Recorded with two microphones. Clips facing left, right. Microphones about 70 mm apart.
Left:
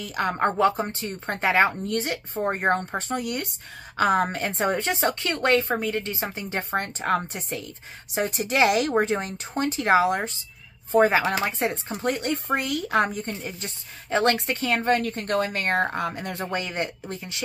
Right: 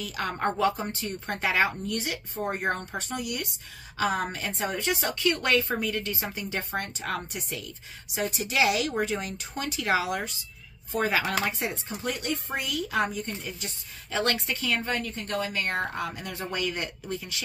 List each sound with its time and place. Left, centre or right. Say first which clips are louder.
0.0 s a woman's voice: left 5 dB; left
12.0 s a woman's voice: left 6 dB; left
14.8 s a woman's voice: left 8 dB; left